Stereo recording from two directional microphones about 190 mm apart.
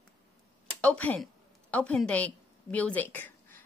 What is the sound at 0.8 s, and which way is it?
A woman's voice, 5° left (ahead or behind).